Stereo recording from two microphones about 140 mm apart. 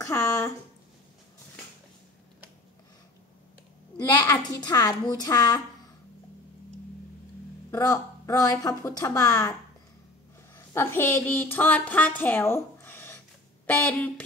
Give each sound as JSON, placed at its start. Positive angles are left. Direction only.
{"t": 0.0, "sound": "a sound", "side_deg": 20}
{"t": 4.0, "sound": "speech", "side_deg": 25}
{"t": 7.7, "sound": "speech", "side_deg": 20}